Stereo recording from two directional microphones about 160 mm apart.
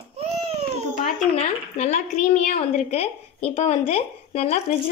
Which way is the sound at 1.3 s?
45° left (ahead or behind).